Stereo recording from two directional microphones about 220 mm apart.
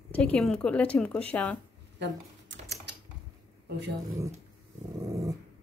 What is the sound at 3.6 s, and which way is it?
Speech, 50° right (ahead or behind).